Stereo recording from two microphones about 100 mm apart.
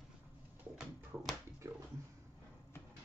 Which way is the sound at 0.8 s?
5° right (ahead or behind).